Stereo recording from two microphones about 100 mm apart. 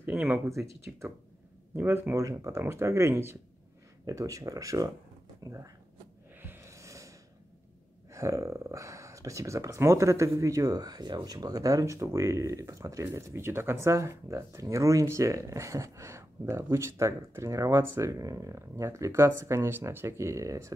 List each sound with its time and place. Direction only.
0.0 s a sound: 15° right (ahead or behind)
0.5 s speech: 30° right (ahead or behind)
6.4 s music: 20° right (ahead or behind)
6.7 s gasp: 30° right (ahead or behind)
8.1 s speech: 30° right (ahead or behind)